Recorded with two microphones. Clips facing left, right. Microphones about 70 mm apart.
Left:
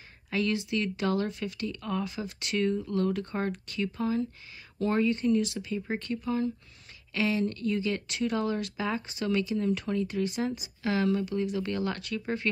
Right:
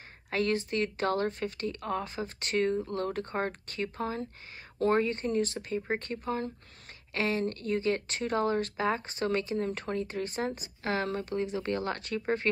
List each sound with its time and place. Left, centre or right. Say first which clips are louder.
0.3 s speech: even; right